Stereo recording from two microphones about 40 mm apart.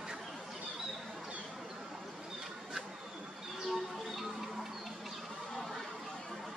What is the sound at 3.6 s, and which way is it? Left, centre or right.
Music, centre.